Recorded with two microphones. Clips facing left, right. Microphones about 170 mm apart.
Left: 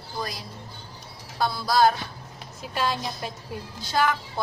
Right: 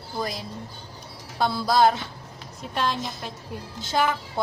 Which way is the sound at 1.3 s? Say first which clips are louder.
Right 2 dB; 20° right (ahead or behind).